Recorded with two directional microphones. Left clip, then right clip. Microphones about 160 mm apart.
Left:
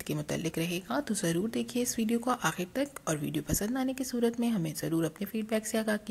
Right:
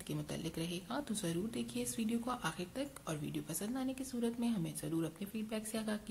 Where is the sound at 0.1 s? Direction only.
45° left (ahead or behind).